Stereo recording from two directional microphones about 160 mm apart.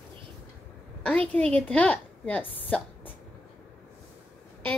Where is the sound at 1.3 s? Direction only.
10° left (ahead or behind).